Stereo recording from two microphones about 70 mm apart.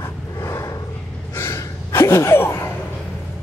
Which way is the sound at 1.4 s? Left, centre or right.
Left.